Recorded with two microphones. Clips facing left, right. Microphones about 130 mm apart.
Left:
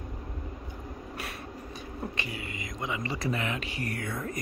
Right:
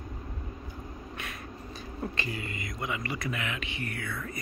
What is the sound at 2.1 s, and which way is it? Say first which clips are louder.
Speech: right 1 dB; 15° left (ahead or behind).